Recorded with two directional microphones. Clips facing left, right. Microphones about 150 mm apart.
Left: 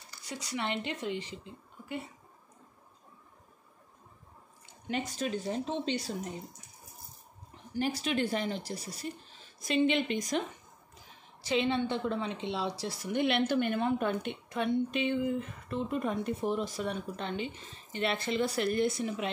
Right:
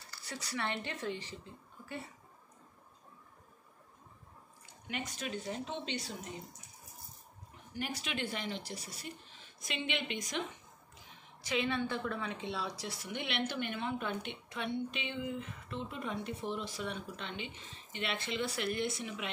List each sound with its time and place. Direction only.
0.1 s speech: 15° left (ahead or behind)
4.8 s speech: 35° left (ahead or behind)
7.7 s speech: 35° left (ahead or behind)
11.4 s a woman's voice: 25° left (ahead or behind)